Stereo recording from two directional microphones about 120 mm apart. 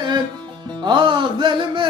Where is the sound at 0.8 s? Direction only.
40° right (ahead or behind).